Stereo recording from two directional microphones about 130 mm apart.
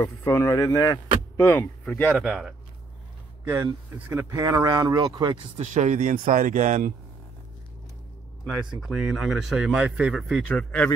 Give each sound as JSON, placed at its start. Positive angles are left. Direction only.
{"t": 0.0, "sound": "speech", "side_deg": 25}
{"t": 1.9, "sound": "speech", "side_deg": 5}
{"t": 4.1, "sound": "speech", "side_deg": -20}
{"t": 5.6, "sound": "speech", "side_deg": -65}
{"t": 8.8, "sound": "speech", "side_deg": 0}
{"t": 10.5, "sound": "speech", "side_deg": 10}